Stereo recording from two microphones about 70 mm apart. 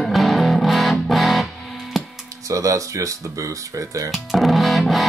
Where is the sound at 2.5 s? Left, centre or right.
Right.